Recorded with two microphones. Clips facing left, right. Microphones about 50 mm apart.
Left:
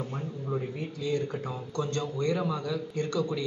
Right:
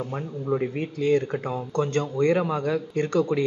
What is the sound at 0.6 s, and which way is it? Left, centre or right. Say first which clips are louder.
A man's voice: right 7 dB; right.